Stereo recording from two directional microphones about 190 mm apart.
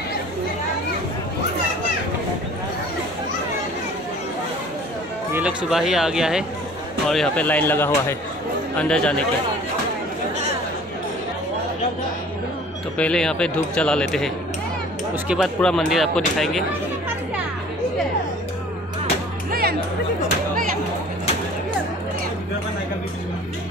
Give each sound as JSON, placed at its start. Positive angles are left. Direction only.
{"t": 5.3, "sound": "speech", "side_deg": -5}
{"t": 12.9, "sound": "speech", "side_deg": 5}
{"t": 19.5, "sound": "music", "side_deg": -55}